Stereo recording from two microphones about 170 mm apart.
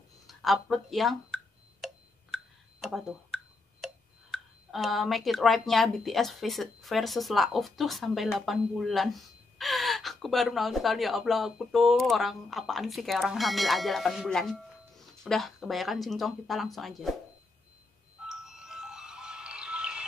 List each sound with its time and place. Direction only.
0.3 s a sound: centre (ahead or behind)
3.8 s speech: centre (ahead or behind)
18.2 s music: centre (ahead or behind)